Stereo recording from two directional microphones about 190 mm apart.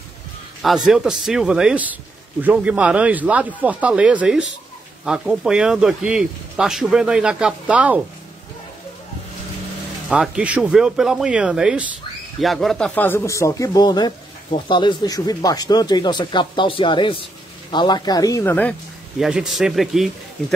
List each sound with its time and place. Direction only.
0.8 s speech: centre (ahead or behind)
10.0 s speech: 5° right (ahead or behind)
19.1 s speech: centre (ahead or behind)